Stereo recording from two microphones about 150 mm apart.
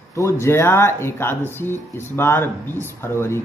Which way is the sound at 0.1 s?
20° left (ahead or behind).